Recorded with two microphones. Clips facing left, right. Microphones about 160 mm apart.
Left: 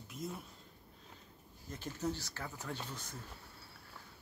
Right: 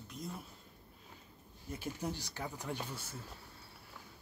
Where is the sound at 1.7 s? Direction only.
10° right (ahead or behind).